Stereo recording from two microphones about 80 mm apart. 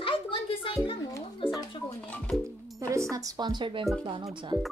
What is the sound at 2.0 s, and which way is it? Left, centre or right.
Music, centre.